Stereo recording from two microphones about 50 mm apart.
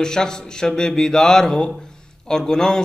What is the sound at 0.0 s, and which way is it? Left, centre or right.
Speech, centre.